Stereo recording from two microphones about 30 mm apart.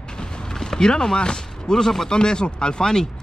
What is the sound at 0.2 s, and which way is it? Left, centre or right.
Mechanisms, left.